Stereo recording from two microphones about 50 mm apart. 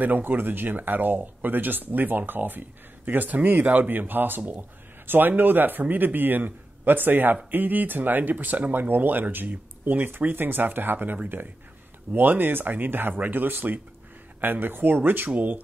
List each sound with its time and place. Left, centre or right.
0.0 s speech: right